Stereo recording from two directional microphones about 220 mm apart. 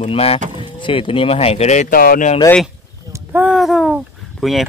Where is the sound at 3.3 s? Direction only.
5° right (ahead or behind).